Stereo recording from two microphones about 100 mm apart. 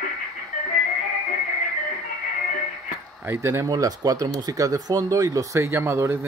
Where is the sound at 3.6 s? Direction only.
40° right (ahead or behind).